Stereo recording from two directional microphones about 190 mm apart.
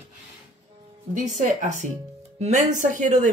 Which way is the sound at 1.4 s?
40° right (ahead or behind).